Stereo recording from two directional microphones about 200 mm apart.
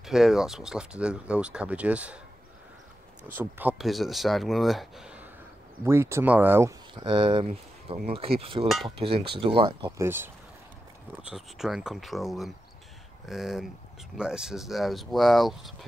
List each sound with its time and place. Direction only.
0.0 s speech: centre (ahead or behind)
3.3 s speech: 10° right (ahead or behind)
7.0 s speech: 25° right (ahead or behind)
9.9 s speech: 10° right (ahead or behind)